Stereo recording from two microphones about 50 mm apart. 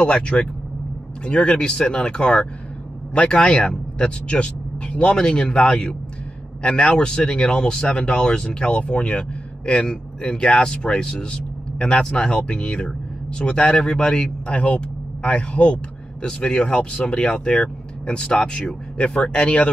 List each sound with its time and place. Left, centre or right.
0.0 s speech: centre